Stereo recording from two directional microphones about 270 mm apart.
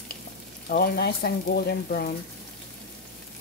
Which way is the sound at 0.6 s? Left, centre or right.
Left.